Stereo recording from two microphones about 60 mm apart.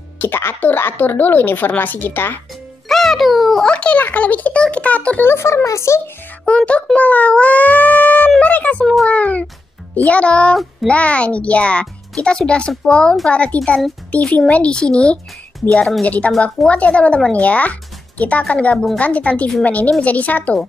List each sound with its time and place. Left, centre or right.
0.2 s speech: left
2.9 s music: centre
3.6 s a child's voice: left
5.2 s speech: left
6.4 s a child's voice: left
10.5 s child singing: centre
10.9 s a child's voice: left